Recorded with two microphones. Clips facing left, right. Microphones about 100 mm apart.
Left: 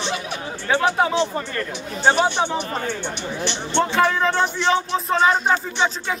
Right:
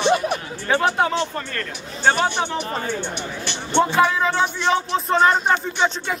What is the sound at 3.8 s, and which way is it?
Speech, 5° right (ahead or behind).